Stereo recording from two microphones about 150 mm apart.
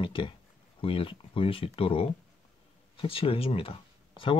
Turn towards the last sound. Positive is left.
turn(degrees=35)  # may be behind; listen again after turning